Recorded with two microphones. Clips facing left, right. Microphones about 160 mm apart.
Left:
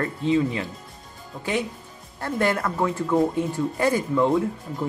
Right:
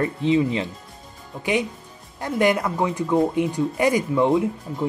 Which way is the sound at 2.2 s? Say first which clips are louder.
Right 3 dB; 15° right (ahead or behind).